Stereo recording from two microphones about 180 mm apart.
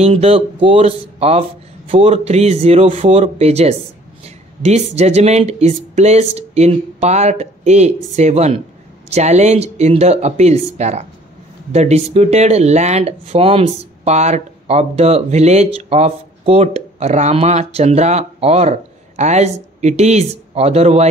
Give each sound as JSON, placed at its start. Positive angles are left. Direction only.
{"t": 0.0, "sound": "speech", "side_deg": -35}